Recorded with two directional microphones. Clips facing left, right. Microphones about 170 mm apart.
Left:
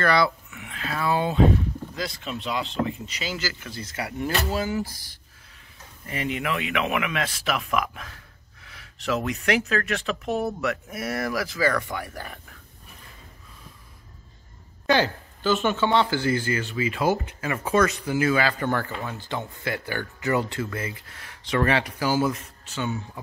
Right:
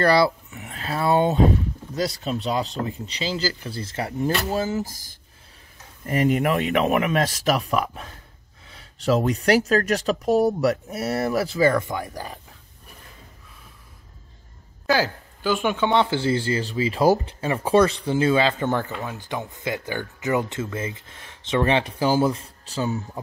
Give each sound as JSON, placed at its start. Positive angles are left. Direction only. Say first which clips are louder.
{"t": 0.0, "sound": "speech", "louder": "right 4 dB", "side_deg": -35}
{"t": 6.0, "sound": "speech", "louder": "right 8 dB", "side_deg": -45}
{"t": 14.9, "sound": "speech", "louder": "even", "side_deg": -5}